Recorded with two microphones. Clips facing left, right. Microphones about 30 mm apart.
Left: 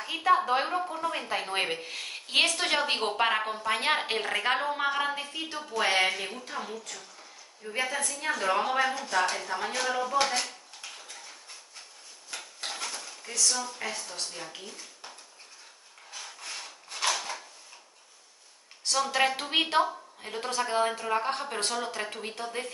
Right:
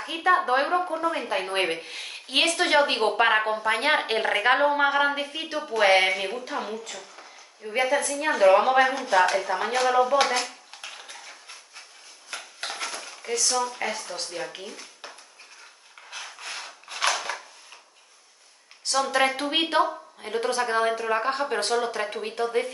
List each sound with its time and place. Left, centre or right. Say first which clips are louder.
0.0 s a woman's voice: right 2 dB; centre; by 10.4 s right
10.8 s cutlery: right 4 dB; right
12.6 s dishes: right 4 dB; right
13.7 s a woman's voice: right 5 dB; right
16.1 s rub: right 4 dB; right
18.9 s a woman's voice: right 3 dB; centre